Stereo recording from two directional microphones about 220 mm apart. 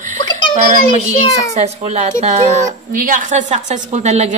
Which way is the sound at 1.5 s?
30° right (ahead or behind).